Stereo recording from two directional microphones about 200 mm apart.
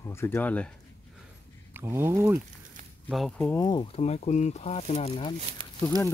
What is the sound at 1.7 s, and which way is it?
Speech, 10° right (ahead or behind).